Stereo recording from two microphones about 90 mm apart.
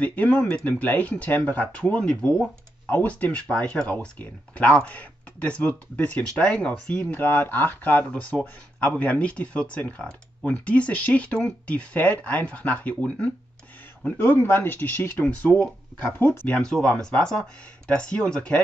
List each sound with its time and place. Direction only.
0.0 s speech: 15° left (ahead or behind)
2.9 s speech: 20° left (ahead or behind)
16.1 s speech: 25° left (ahead or behind)
16.4 s speech: 10° left (ahead or behind)